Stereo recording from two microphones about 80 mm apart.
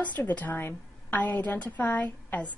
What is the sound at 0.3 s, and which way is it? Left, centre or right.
A woman's voice, centre.